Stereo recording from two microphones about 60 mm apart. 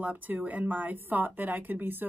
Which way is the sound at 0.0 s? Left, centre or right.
Right.